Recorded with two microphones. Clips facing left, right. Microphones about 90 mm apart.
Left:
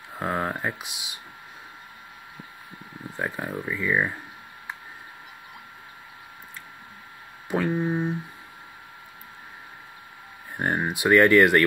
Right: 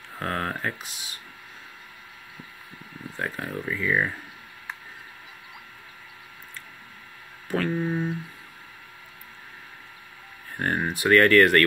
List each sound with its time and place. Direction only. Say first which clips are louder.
0.1 s speech: left 2 dB; 15° left (ahead or behind)
3.2 s speech: left 1 dB; 15° left (ahead or behind)
7.4 s a sound: left 1 dB; 15° left (ahead or behind)
10.6 s speech: left 1 dB; 15° left (ahead or behind)